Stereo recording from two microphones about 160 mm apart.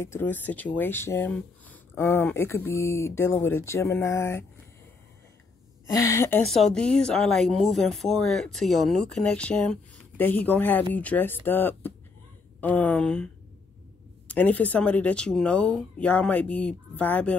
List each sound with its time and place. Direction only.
0.0 s speech: 15° left (ahead or behind)
5.9 s a woman's voice: 20° left (ahead or behind)
6.4 s speech: centre (ahead or behind)